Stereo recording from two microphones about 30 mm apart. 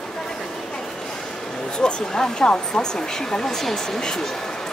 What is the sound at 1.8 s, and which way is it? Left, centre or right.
Speech, left.